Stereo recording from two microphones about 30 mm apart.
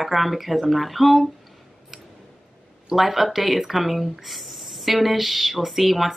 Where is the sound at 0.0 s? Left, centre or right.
Centre.